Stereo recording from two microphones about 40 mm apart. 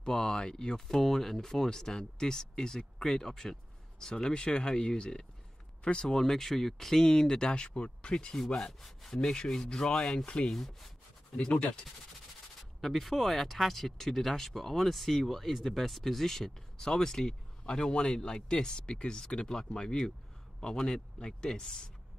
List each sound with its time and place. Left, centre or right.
0.0 s speech: centre
0.7 s speech: centre
11.4 s speech: left
12.8 s speech: centre